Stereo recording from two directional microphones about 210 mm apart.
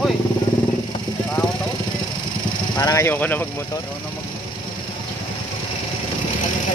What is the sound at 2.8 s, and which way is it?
Speech, 15° left (ahead or behind).